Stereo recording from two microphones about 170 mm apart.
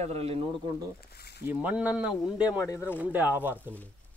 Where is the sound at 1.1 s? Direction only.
70° left (ahead or behind).